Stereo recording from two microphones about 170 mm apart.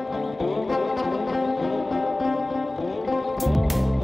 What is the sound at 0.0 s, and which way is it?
Music, centre (ahead or behind).